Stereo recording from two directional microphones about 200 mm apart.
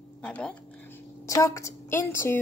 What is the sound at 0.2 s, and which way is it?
A woman's voice, 5° left (ahead or behind).